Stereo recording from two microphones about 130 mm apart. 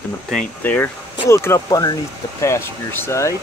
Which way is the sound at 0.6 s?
15° left (ahead or behind).